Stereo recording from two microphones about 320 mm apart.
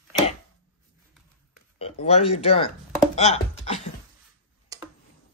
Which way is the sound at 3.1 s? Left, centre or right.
Centre.